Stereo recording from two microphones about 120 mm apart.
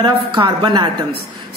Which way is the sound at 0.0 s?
40° right (ahead or behind).